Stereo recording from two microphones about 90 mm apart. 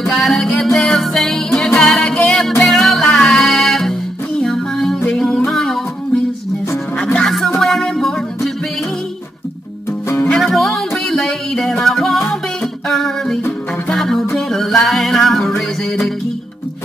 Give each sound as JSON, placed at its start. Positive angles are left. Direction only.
{"t": 0.1, "sound": "music", "side_deg": 5}
{"t": 10.0, "sound": "music", "side_deg": 25}
{"t": 10.3, "sound": "music", "side_deg": 0}